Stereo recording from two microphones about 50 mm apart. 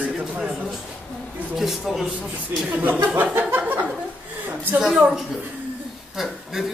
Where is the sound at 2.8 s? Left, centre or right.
Right.